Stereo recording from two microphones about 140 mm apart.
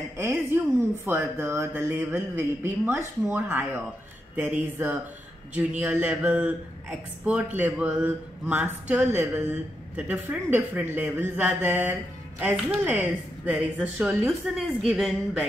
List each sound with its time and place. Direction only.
0.2 s a man's voice: 15° right (ahead or behind)